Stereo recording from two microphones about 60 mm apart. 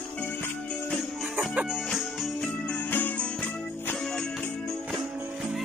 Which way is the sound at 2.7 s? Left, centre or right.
Left.